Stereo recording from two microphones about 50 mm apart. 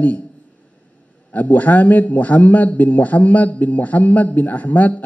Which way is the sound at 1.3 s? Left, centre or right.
Left.